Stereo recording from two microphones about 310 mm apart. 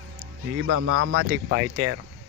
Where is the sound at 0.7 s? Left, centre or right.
Right.